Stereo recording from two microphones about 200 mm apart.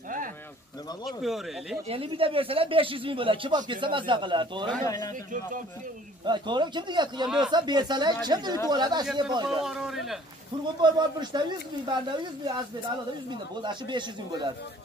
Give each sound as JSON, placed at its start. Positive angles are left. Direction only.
{"t": 1.0, "sound": "speech", "side_deg": 0}
{"t": 1.9, "sound": "speech", "side_deg": -30}
{"t": 4.8, "sound": "a man's voice", "side_deg": 15}
{"t": 6.2, "sound": "speech", "side_deg": -20}
{"t": 9.6, "sound": "speech", "side_deg": 0}
{"t": 10.8, "sound": "speech", "side_deg": -20}